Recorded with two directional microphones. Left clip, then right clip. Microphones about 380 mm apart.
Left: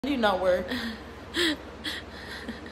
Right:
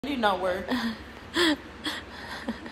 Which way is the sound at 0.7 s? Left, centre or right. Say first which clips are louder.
Right 2 dB; centre.